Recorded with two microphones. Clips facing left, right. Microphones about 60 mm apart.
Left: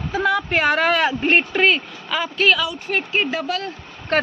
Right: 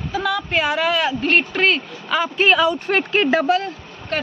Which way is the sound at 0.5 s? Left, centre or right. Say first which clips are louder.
Even; left.